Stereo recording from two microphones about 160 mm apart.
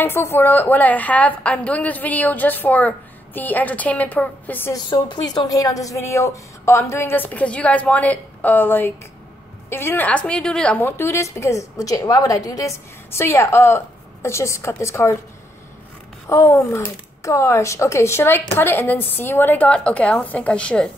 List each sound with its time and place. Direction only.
0.0 s a woman's voice: 15° left (ahead or behind)
4.8 s a woman's voice: 30° left (ahead or behind)
16.3 s a woman's voice: 20° left (ahead or behind)